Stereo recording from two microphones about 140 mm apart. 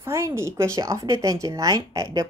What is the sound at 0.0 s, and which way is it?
Speech, 20° right (ahead or behind).